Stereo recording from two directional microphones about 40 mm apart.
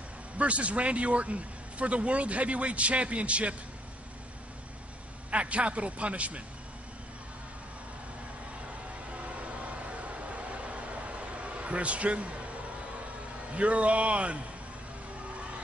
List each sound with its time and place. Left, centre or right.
0.4 s speech: right
5.3 s speech: right
9.8 s a sound: right
13.6 s speech: right